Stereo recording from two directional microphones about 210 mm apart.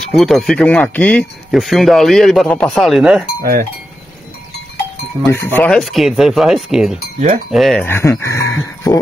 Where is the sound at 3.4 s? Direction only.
45° right (ahead or behind).